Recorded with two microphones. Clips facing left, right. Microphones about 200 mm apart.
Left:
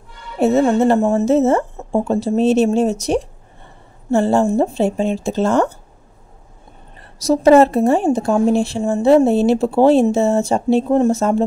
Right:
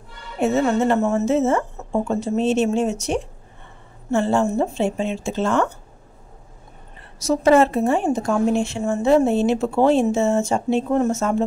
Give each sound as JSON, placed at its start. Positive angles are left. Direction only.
{"t": 0.4, "sound": "a woman's voice", "side_deg": 35}
{"t": 7.2, "sound": "a woman's voice", "side_deg": 35}